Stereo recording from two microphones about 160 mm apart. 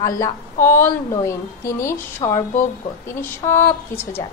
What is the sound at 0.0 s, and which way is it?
A woman's voice, 20° left (ahead or behind).